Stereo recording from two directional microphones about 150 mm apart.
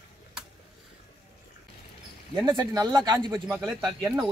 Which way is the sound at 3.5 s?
Centre (ahead or behind).